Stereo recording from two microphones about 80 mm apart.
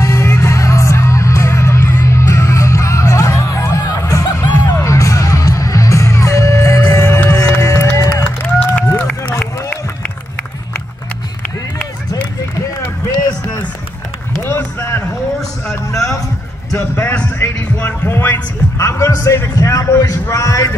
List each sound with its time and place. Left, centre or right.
0.0 s music: left
8.2 s run: centre
14.4 s run: left
16.7 s a sound: left
18.0 s heart sounds: left
18.8 s music: left
19.5 s a sound: left